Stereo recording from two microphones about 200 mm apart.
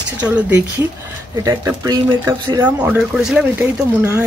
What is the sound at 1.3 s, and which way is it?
A woman's voice, 15° right (ahead or behind).